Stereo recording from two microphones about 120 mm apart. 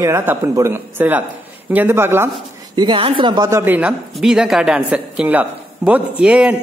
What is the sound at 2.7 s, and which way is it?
Speech, 40° right (ahead or behind).